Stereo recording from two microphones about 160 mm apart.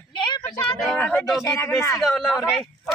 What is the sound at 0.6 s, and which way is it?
Speech, 5° left (ahead or behind).